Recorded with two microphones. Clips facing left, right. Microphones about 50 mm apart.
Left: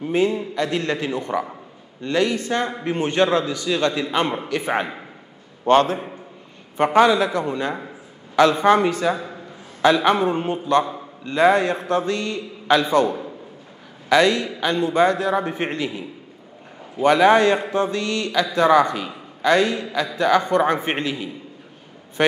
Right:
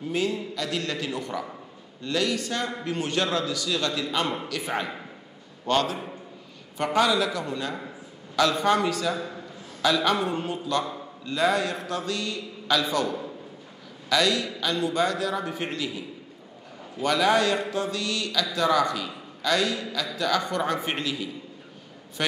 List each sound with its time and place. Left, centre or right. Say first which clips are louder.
0.0 s a man's voice: left 7 dB; left